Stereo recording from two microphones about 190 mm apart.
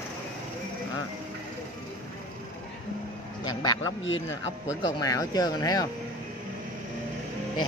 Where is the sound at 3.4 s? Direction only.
20° left (ahead or behind).